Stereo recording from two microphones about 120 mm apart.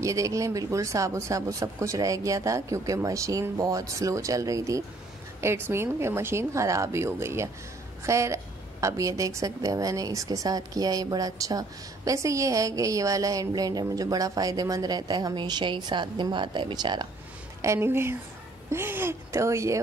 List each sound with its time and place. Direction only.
0.0 s a woman's voice: 25° right (ahead or behind)
17.6 s speech: 20° right (ahead or behind)